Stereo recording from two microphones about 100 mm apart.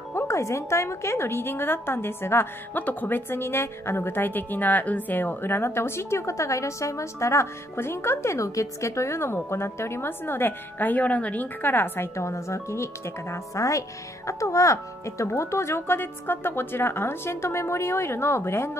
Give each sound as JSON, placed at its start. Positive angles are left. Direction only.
{"t": 0.1, "sound": "a woman's voice", "side_deg": 30}